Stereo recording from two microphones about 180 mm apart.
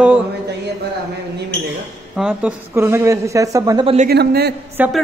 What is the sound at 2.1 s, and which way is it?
Speech, 5° right (ahead or behind).